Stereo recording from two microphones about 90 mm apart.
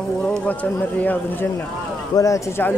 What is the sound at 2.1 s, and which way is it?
Speech, 35° left (ahead or behind).